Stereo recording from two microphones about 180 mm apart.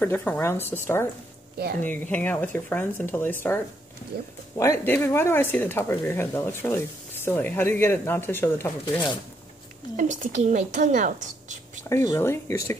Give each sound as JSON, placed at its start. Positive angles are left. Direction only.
{"t": 0.0, "sound": "speech", "side_deg": 10}
{"t": 1.8, "sound": "speech", "side_deg": 10}
{"t": 9.9, "sound": "speech", "side_deg": -45}
{"t": 12.1, "sound": "speech", "side_deg": 15}